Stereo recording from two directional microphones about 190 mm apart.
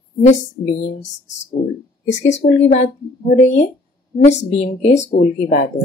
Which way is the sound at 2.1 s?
35° left (ahead or behind).